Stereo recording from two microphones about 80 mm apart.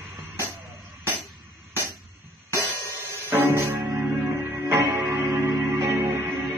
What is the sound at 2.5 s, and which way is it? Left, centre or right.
Music, right.